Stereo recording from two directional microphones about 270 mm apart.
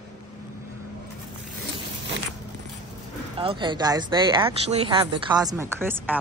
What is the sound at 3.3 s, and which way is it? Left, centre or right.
Speech, centre.